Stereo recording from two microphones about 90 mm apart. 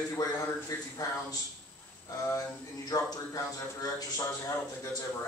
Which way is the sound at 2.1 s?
30° left (ahead or behind).